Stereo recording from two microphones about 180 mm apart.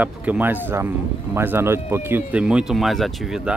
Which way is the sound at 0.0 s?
10° right (ahead or behind).